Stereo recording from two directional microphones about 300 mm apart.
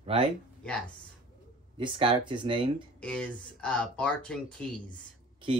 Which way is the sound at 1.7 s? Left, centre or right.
Centre.